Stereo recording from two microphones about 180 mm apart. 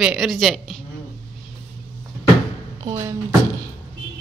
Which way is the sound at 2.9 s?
20° right (ahead or behind).